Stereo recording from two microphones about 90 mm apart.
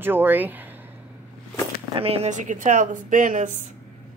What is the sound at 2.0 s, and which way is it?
Speech, 90° right.